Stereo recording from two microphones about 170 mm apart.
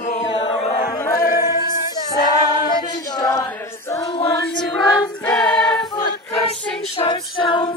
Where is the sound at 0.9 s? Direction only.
20° left (ahead or behind).